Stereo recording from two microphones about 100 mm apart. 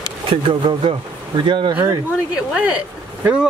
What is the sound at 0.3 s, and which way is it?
Speech, 55° right (ahead or behind).